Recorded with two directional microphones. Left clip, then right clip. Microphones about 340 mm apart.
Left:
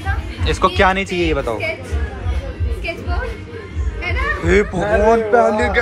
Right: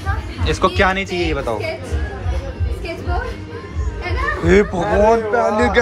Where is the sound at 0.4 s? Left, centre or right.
Centre.